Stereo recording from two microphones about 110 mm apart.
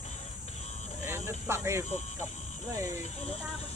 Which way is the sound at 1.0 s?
20° right (ahead or behind).